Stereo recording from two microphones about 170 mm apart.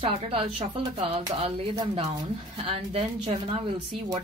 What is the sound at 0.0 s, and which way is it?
A woman's voice, 30° right (ahead or behind).